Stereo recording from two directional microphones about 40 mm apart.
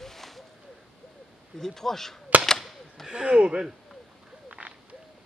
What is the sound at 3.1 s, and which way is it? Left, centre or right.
Speech, centre.